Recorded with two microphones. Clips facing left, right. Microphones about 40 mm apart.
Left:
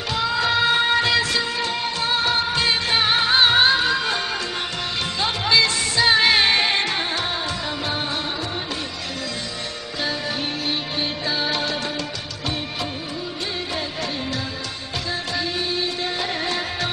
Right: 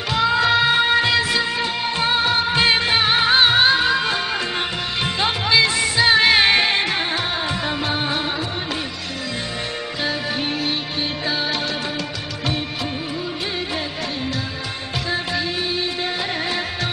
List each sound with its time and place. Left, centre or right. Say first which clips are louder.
0.4 s music of bollywood: even; centre
2.0 s music: right 3 dB; right
2.5 s music: right 4 dB; right
2.9 s music: right 2 dB; centre
5.4 s music: right 1 dB; centre
11.2 s music: even; centre
15.3 s music: right 2 dB; centre